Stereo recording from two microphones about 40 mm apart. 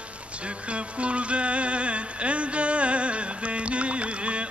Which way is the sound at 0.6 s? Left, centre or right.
Right.